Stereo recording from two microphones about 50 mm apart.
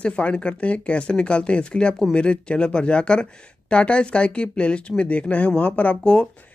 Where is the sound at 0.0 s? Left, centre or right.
Left.